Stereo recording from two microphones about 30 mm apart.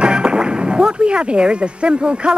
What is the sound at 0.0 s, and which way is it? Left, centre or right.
Speech, right.